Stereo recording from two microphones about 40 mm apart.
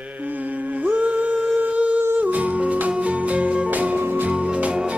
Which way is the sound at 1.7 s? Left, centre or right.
Right.